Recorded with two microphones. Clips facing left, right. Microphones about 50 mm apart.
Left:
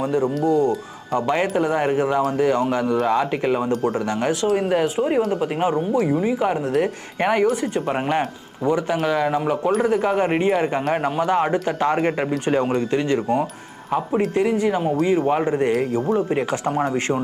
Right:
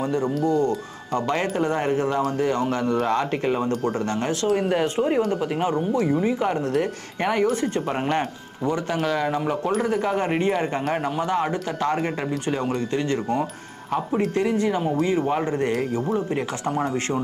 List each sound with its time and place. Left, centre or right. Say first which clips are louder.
0.0 s speech: left 3 dB; centre
4.5 s speech: left 1 dB; centre
16.2 s speech: left 4 dB; left